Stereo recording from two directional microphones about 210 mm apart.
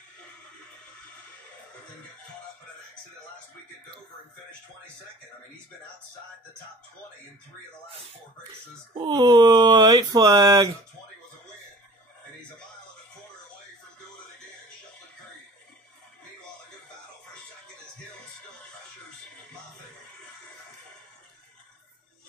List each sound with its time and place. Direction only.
8.9 s speech: 20° right (ahead or behind)